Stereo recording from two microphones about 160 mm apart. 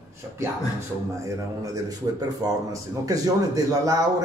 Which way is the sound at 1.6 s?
25° right (ahead or behind).